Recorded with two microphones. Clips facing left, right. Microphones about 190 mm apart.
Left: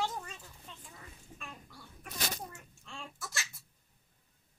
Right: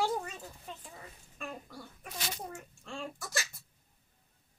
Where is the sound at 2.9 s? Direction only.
40° right (ahead or behind).